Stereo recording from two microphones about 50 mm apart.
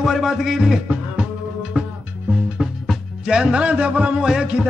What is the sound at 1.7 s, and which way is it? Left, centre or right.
Music, centre.